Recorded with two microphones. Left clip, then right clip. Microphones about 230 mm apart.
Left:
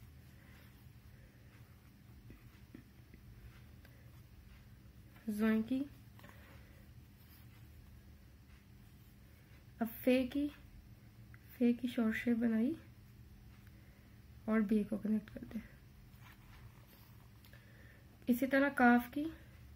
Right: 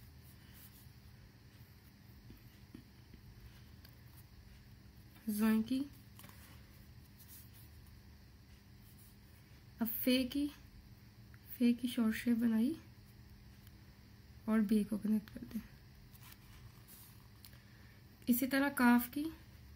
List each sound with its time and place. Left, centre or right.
5.3 s a woman's voice: right
9.8 s speech: right
11.5 s a woman's voice: right
14.4 s a woman's voice: right
18.2 s a woman's voice: right